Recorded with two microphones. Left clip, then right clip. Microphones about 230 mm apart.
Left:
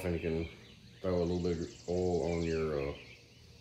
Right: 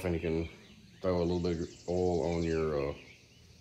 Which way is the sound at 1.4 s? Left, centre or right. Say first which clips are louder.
Right 1 dB; centre.